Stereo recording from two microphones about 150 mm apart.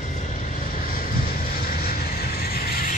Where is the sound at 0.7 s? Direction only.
75° left (ahead or behind).